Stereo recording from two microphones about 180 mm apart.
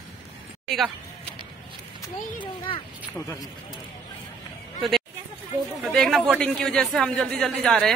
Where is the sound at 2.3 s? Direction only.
30° left (ahead or behind).